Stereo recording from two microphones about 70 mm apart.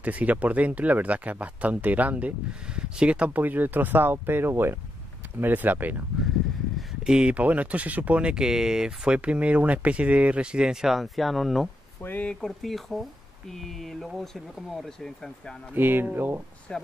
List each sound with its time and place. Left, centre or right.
0.0 s speech: right
7.0 s speech: centre
12.0 s speech: left
12.4 s speech: centre
15.7 s speech: right
16.7 s speech: centre